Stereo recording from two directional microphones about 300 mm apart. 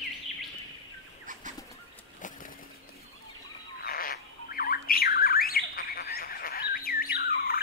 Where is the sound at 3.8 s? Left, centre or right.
Left.